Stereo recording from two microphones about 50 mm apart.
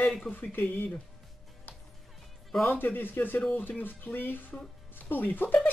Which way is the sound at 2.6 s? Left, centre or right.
Left.